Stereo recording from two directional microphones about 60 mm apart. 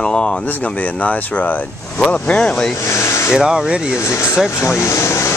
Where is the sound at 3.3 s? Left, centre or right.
Centre.